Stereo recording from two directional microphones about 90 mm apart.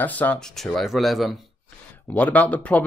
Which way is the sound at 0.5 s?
Centre (ahead or behind).